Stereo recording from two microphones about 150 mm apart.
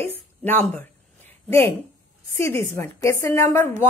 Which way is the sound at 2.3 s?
15° left (ahead or behind).